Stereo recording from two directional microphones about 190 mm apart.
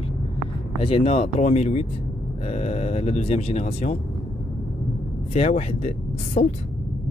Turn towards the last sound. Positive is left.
turn(degrees=35)  # may be behind; listen again after turning